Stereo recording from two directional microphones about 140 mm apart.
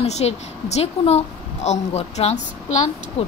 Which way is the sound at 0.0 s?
50° left (ahead or behind).